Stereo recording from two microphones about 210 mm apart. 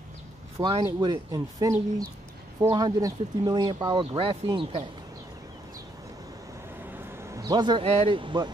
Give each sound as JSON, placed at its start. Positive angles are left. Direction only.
{"t": 0.6, "sound": "speech", "side_deg": -20}
{"t": 6.9, "sound": "a man's voice", "side_deg": -10}